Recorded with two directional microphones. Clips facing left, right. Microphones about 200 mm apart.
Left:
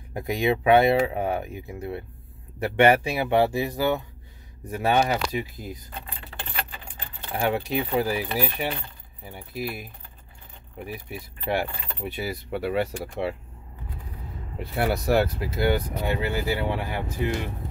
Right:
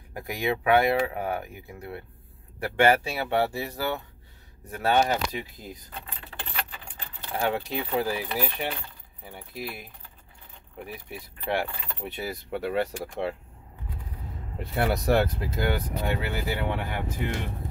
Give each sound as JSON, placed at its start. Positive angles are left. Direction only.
{"t": 0.1, "sound": "speech", "side_deg": 25}
{"t": 6.9, "sound": "speech", "side_deg": 15}
{"t": 10.9, "sound": "speech", "side_deg": 10}
{"t": 14.6, "sound": "speech", "side_deg": 5}